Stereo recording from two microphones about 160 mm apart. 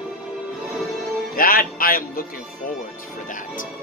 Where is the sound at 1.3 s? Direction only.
65° left (ahead or behind).